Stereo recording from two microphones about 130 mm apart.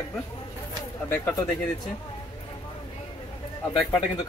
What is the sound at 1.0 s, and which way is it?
Speech, 15° left (ahead or behind).